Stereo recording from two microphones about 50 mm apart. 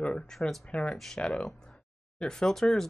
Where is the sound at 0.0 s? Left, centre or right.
Centre.